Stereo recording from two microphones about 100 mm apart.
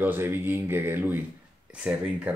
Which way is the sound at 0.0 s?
20° right (ahead or behind).